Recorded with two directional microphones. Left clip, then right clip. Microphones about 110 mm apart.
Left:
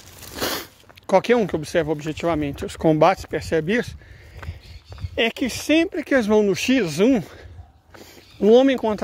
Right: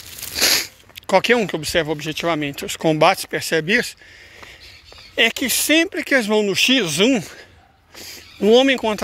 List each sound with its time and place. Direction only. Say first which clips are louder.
0.3 s a sound: right 9 dB; 45° left (ahead or behind); by 1.5 s 25° left (ahead or behind)
1.5 s speech: right 2 dB; 30° left (ahead or behind)
2.5 s speech: even; 40° left (ahead or behind)
5.1 s speech: right 5 dB; 25° left (ahead or behind)
6.0 s speech: right 1 dB; 45° left (ahead or behind)
6.8 s speech: right 2 dB; 25° left (ahead or behind)
8.0 s a sound: right 1 dB; 20° left (ahead or behind)
8.5 s speech: right 3 dB; 35° left (ahead or behind)